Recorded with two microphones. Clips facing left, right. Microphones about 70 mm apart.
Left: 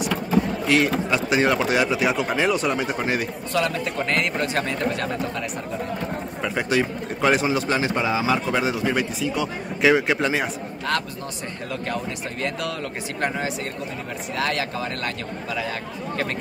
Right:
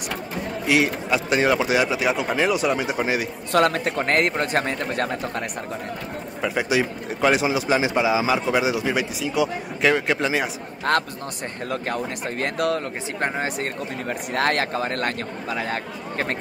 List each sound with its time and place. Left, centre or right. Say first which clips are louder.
0.7 s speech: right 3 dB; centre
3.5 s a man's voice: right 4 dB; right
6.4 s speech: right 1 dB; centre
10.9 s a man's voice: right 4 dB; right
14.3 s a man's voice: right 3 dB; right